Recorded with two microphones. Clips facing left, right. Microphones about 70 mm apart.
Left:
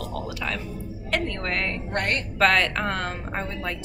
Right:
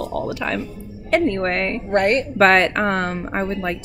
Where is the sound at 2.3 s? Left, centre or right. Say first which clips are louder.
Right 5 dB; right.